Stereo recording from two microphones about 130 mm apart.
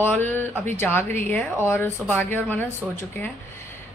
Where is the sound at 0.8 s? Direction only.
15° left (ahead or behind).